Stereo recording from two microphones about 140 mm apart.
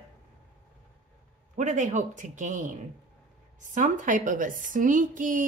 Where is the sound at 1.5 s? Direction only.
60° right (ahead or behind).